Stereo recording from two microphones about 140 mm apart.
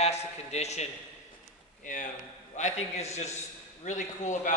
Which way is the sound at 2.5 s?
55° left (ahead or behind).